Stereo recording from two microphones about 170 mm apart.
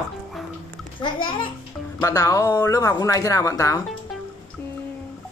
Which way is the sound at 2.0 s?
20° left (ahead or behind).